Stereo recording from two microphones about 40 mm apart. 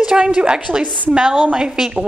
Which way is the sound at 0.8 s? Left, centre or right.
Right.